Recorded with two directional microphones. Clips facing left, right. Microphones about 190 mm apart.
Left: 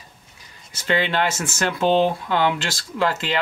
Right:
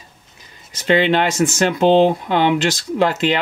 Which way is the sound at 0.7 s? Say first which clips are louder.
Right 6 dB; 20° right (ahead or behind).